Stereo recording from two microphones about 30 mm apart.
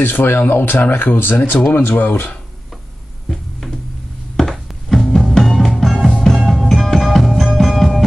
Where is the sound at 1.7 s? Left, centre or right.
Left.